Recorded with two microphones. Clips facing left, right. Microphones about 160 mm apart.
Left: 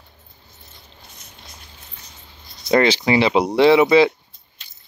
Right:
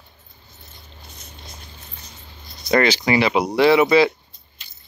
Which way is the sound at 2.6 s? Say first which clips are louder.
Left 2 dB; 25° left (ahead or behind).